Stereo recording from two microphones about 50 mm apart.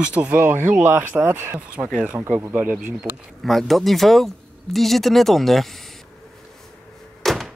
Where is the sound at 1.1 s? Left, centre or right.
Right.